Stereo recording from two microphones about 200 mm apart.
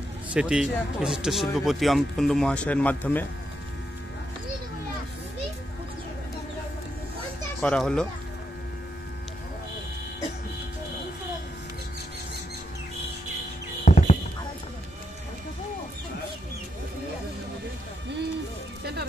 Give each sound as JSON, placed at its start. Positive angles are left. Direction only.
{"t": 0.3, "sound": "speech", "side_deg": -5}
{"t": 7.6, "sound": "speech", "side_deg": 5}
{"t": 13.8, "sound": "music", "side_deg": 35}